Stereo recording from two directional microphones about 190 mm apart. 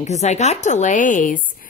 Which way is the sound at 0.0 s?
35° left (ahead or behind).